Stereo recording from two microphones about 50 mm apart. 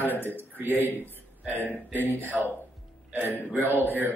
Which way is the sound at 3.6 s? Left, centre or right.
Right.